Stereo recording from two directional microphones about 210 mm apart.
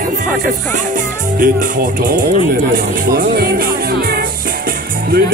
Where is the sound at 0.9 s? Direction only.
40° right (ahead or behind).